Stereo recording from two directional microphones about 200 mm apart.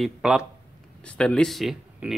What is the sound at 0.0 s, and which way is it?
Speech, centre (ahead or behind).